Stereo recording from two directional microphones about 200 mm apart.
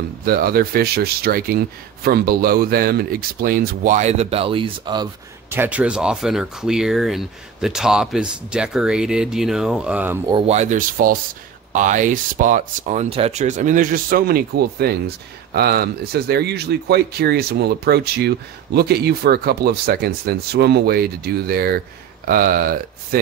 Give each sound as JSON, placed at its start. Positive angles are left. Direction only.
{"t": 0.2, "sound": "speech", "side_deg": -50}
{"t": 5.5, "sound": "speech", "side_deg": -10}
{"t": 10.2, "sound": "speech", "side_deg": -30}